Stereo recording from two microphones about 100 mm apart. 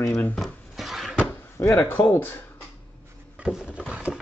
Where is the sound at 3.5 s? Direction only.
10° right (ahead or behind).